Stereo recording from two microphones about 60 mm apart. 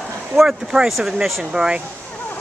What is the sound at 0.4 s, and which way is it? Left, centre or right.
Speech, centre.